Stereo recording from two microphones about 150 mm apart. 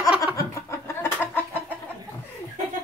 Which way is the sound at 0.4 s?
15° left (ahead or behind).